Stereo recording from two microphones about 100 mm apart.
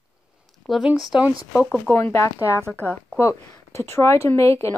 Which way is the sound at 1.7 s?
20° left (ahead or behind).